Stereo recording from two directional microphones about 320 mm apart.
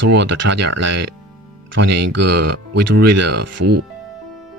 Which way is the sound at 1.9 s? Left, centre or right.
Right.